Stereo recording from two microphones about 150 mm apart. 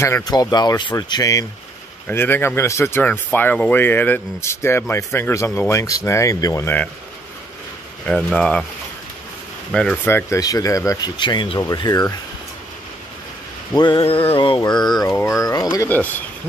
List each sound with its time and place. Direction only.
0.0 s speech: 20° left (ahead or behind)
2.0 s speech: 15° left (ahead or behind)
8.1 s speech: 5° left (ahead or behind)
9.7 s speech: 5° left (ahead or behind)
10.0 s speech: 15° left (ahead or behind)
13.7 s a sound: 30° left (ahead or behind)
14.6 s speech: 30° left (ahead or behind)
15.9 s speech: 10° left (ahead or behind)